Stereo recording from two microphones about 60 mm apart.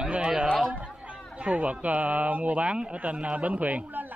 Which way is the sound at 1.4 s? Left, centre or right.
Right.